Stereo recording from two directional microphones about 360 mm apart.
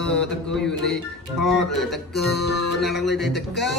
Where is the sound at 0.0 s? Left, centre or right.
Centre.